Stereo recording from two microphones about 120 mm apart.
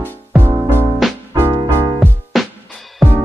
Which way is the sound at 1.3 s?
20° right (ahead or behind).